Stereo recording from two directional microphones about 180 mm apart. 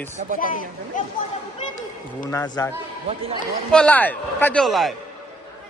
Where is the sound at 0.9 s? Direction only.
45° left (ahead or behind).